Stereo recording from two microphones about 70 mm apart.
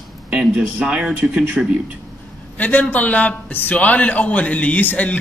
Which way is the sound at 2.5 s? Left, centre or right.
Left.